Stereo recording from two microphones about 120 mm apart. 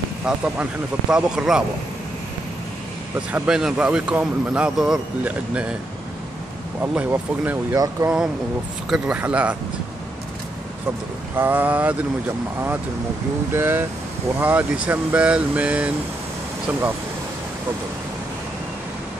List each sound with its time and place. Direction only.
1.1 s speech: 5° right (ahead or behind)
3.2 s speech: 10° right (ahead or behind)
6.8 s speech: 15° right (ahead or behind)
7.7 s speech: 25° right (ahead or behind)
8.9 s speech: 10° right (ahead or behind)
11.3 s speech: 15° right (ahead or behind)
13.5 s speech: 20° right (ahead or behind)